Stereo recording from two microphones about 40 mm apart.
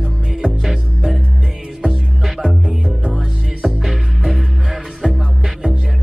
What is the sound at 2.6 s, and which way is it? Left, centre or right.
Music, right.